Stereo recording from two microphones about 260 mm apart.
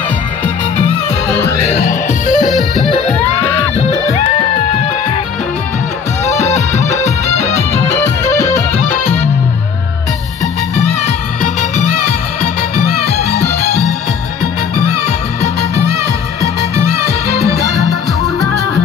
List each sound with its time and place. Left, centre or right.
1.7 s music: left
3.3 s music: centre
6.4 s music: left